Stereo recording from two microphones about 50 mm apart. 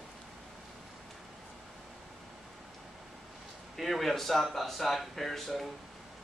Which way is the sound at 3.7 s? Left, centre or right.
Centre.